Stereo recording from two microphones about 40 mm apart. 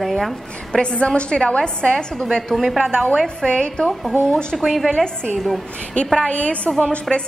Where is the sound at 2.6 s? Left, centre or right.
Centre.